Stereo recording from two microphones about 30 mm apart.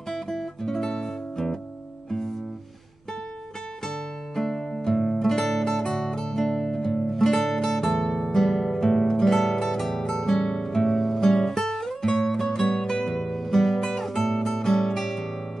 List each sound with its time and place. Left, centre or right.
0.1 s music: centre
0.8 s music: left
4.4 s music: centre
9.8 s zither: centre
10.0 s music: centre